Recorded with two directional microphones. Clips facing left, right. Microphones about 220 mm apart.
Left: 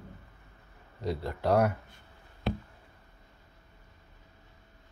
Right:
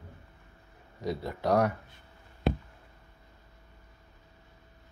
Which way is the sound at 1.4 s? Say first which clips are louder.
Even; 5° left (ahead or behind).